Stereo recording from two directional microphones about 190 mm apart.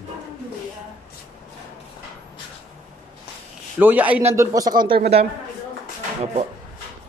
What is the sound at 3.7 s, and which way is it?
A man's voice, 10° right (ahead or behind).